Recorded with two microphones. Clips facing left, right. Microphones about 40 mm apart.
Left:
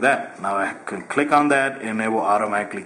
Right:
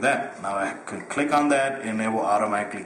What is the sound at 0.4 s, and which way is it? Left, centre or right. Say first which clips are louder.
A man's voice: left 4 dB; centre.